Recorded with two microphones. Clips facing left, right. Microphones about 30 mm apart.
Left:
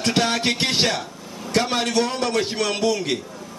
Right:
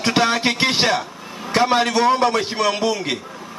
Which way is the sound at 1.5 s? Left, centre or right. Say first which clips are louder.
Right 4 dB; centre.